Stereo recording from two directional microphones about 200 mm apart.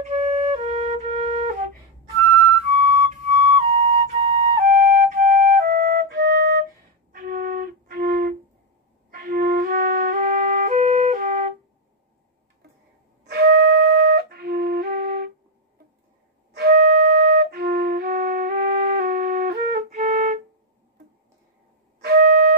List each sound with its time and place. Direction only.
0.0 s flute: 35° right (ahead or behind)
3.5 s flute: 35° right (ahead or behind); by 6.6 s 50° right (ahead or behind)
7.1 s music: 45° right (ahead or behind)
9.1 s flute: 45° right (ahead or behind)
13.3 s flute: 55° right (ahead or behind)
16.5 s flute: 50° right (ahead or behind)
22.0 s wind instrument: 50° right (ahead or behind)